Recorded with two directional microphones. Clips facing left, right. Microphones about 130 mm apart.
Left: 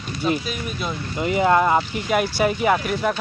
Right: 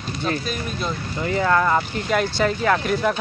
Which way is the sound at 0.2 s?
10° left (ahead or behind).